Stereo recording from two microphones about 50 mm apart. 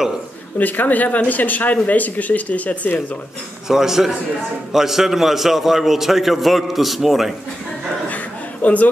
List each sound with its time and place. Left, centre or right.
0.6 s speech: left
3.6 s a man's voice: centre
8.6 s a man's voice: left